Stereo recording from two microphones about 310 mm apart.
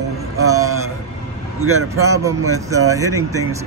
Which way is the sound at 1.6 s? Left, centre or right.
Right.